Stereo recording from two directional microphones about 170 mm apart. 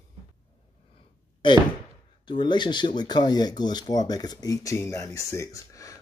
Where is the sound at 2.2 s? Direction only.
25° left (ahead or behind).